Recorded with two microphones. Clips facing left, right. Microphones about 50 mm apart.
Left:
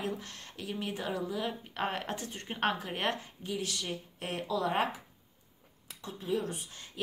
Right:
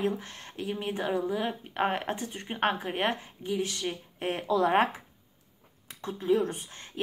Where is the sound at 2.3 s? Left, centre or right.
Centre; by 4.9 s right.